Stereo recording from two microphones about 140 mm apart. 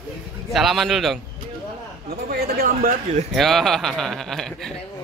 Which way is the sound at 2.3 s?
85° right.